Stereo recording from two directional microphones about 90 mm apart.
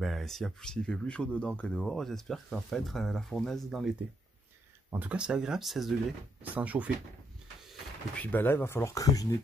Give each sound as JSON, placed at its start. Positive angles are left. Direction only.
{"t": 0.0, "sound": "speech", "side_deg": 0}
{"t": 4.9, "sound": "speech", "side_deg": -15}
{"t": 6.5, "sound": "speech", "side_deg": -15}
{"t": 8.2, "sound": "speech", "side_deg": 20}